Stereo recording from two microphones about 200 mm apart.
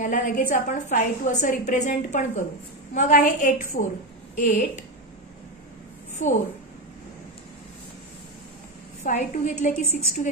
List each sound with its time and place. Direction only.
0.0 s a woman's voice: 40° left (ahead or behind)
6.2 s a woman's voice: 35° left (ahead or behind)
9.0 s a woman's voice: 40° left (ahead or behind)